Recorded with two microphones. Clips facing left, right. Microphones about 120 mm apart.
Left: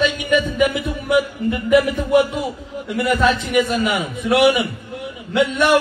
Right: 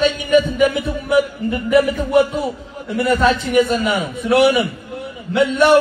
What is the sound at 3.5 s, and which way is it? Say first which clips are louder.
A man's voice: right 2 dB; 35° right (ahead or behind).